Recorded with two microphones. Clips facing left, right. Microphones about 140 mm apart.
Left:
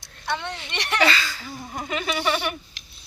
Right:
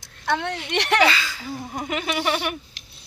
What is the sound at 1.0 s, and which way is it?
Speech, 10° right (ahead or behind).